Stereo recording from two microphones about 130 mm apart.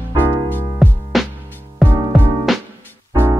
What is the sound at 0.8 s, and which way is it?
Music, centre (ahead or behind).